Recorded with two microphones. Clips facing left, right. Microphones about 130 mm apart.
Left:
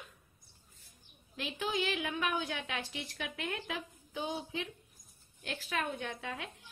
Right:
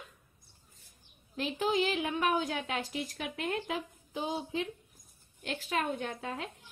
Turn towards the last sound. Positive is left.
turn(degrees=-30)  # may be behind; listen again after turning